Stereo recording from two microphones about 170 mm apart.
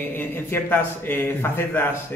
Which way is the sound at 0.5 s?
10° left (ahead or behind).